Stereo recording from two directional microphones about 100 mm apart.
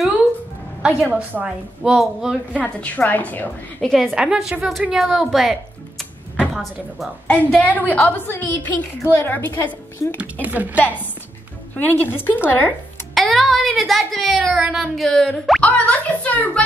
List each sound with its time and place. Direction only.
0.8 s a woman's voice: 15° right (ahead or behind)
2.6 s a woman's voice: 15° left (ahead or behind)
3.9 s a woman's voice: centre (ahead or behind)
7.2 s a woman's voice: 15° left (ahead or behind)
10.4 s a woman's voice: 15° right (ahead or behind)
11.7 s a woman's voice: 20° left (ahead or behind)
13.1 s speech: centre (ahead or behind)
15.6 s a child's voice: 15° left (ahead or behind)